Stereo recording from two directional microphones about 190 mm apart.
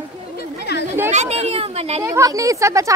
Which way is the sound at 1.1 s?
35° right (ahead or behind).